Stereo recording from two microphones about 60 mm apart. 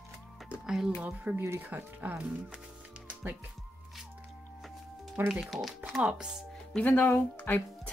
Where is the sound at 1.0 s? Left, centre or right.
Right.